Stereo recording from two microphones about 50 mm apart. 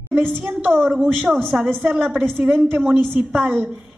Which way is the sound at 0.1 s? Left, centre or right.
Right.